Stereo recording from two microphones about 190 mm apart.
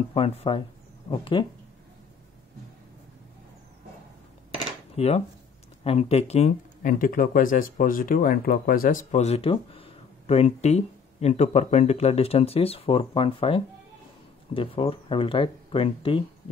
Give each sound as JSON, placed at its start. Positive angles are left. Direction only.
{"t": 0.1, "sound": "speech", "side_deg": 30}
{"t": 4.9, "sound": "speech", "side_deg": 35}